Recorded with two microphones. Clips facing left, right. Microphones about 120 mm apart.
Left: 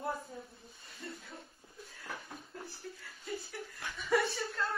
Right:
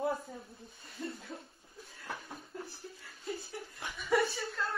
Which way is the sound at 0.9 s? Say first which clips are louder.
Right 5 dB; 25° right (ahead or behind).